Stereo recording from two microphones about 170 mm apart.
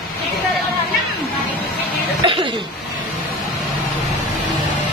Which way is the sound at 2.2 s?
30° right (ahead or behind).